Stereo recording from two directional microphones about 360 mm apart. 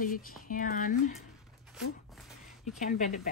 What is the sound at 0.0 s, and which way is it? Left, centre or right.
A woman's voice, left.